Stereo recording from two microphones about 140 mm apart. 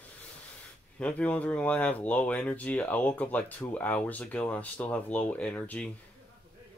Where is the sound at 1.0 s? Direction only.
10° left (ahead or behind).